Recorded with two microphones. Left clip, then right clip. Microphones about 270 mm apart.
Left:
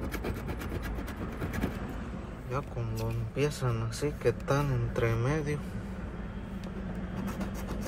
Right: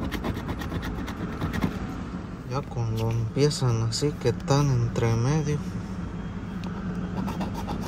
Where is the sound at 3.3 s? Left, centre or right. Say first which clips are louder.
Right 6 dB; right.